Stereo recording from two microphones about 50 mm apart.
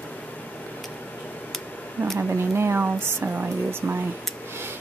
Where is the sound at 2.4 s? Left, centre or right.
Right.